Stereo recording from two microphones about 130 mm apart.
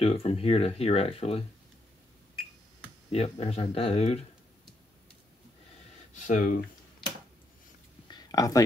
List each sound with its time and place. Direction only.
0.0 s speech: 50° left (ahead or behind)
3.1 s speech: 55° left (ahead or behind)
6.1 s speech: 80° left
8.1 s a sound: 30° left (ahead or behind)